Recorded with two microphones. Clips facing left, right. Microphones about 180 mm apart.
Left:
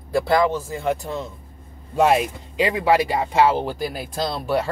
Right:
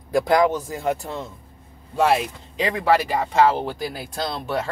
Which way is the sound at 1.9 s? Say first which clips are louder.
Left 2 dB; 15° left (ahead or behind).